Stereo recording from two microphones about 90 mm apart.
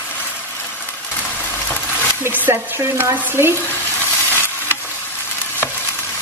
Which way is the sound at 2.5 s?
30° right (ahead or behind).